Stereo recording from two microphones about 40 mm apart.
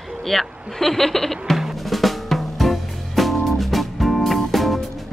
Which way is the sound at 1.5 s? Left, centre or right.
Centre.